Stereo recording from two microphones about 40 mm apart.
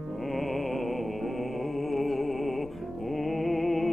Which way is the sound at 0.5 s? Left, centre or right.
Centre.